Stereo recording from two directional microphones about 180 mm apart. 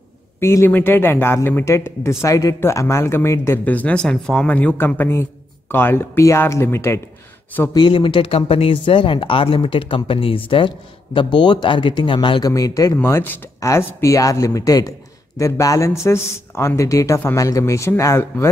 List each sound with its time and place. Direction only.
0.4 s speech: 15° left (ahead or behind)
7.7 s speech: 25° left (ahead or behind)